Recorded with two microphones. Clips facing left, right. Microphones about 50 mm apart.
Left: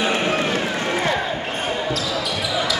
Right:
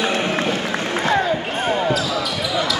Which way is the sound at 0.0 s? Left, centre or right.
Left.